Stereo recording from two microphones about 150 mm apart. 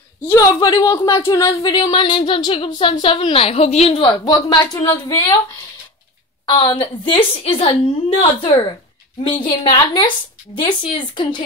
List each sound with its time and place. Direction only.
0.3 s speech: 25° left (ahead or behind)
6.4 s a woman's voice: 30° left (ahead or behind)